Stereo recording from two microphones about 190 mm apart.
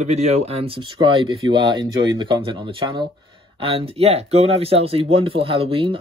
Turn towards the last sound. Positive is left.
turn(degrees=-30)  # may be behind; listen again after turning